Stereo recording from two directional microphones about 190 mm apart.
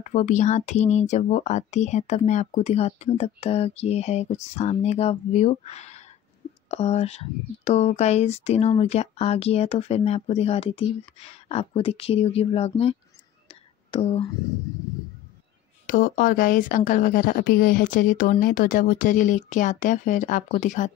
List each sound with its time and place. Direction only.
0.0 s speech: 40° left (ahead or behind)
13.9 s speech: 35° left (ahead or behind)
15.9 s a woman's voice: 45° left (ahead or behind)